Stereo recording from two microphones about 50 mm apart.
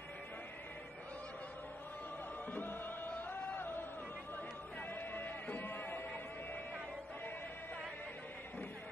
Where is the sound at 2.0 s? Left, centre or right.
Left.